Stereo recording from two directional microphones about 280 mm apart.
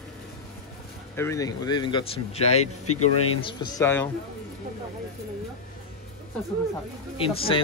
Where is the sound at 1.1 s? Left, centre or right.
Centre.